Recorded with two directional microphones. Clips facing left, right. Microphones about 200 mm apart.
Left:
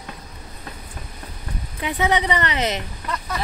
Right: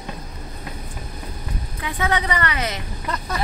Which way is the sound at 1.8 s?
20° left (ahead or behind).